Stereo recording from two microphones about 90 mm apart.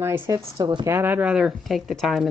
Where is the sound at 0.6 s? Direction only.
55° right (ahead or behind).